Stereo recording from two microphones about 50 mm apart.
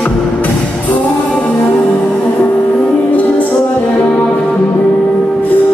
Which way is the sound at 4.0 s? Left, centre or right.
Left.